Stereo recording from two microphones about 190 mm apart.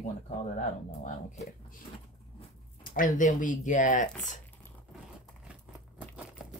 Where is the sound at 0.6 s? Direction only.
35° left (ahead or behind).